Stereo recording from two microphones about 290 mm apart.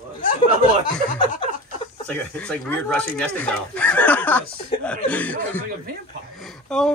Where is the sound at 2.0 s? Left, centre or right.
Centre.